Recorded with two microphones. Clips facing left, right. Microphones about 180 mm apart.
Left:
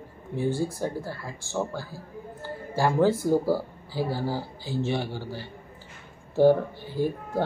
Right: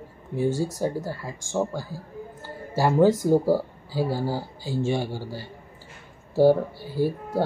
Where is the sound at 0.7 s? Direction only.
10° right (ahead or behind).